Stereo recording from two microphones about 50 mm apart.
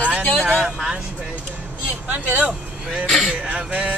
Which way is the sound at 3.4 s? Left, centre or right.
Right.